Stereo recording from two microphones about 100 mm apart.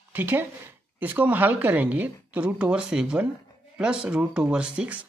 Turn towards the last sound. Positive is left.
turn(degrees=-10)  # may be behind; listen again after turning